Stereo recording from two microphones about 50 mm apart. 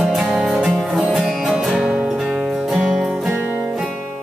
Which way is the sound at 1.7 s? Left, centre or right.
Right.